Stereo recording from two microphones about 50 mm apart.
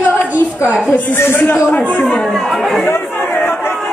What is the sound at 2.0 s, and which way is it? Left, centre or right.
Speech, centre.